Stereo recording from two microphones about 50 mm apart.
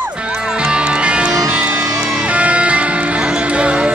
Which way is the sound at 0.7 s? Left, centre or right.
Right.